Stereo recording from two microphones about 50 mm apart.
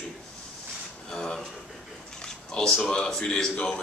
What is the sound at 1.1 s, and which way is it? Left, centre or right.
Speech, centre.